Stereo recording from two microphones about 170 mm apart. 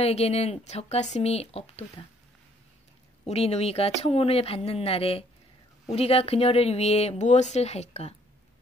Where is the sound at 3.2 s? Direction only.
40° left (ahead or behind).